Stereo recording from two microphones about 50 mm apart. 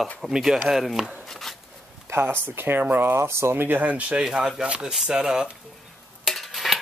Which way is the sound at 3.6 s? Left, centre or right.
Right.